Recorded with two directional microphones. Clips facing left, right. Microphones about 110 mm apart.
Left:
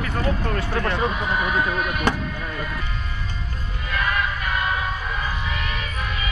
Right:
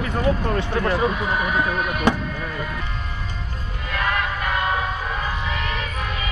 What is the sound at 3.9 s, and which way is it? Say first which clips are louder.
Music: right 1 dB; 65° right (ahead or behind).